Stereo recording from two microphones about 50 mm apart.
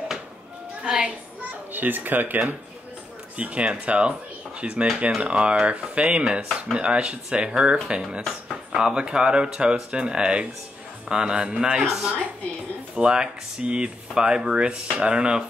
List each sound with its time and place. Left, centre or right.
0.8 s speech: centre
1.7 s a child's voice: right
3.3 s speech: right